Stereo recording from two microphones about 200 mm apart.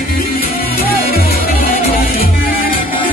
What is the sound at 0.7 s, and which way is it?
Music, 45° left (ahead or behind).